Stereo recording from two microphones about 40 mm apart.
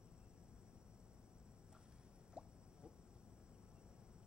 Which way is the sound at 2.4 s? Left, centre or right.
Right.